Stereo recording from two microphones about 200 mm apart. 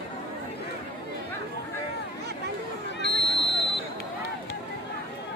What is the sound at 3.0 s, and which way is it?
Buzzer, 60° left (ahead or behind).